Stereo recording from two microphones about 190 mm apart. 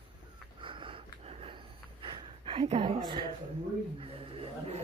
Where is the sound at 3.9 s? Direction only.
30° right (ahead or behind).